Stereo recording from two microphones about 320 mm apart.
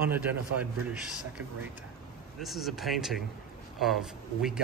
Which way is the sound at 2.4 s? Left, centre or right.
Centre.